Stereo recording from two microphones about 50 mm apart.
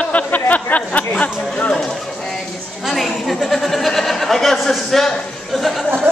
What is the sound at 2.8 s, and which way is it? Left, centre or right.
Chuckle, centre.